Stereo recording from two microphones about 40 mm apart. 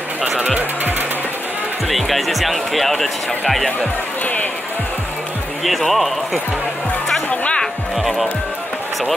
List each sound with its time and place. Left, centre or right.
1.9 s speech: centre
5.6 s speech: centre
7.2 s music: left